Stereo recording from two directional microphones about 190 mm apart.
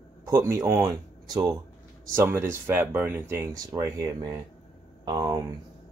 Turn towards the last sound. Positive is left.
turn(degrees=-20)  # may be behind; listen again after turning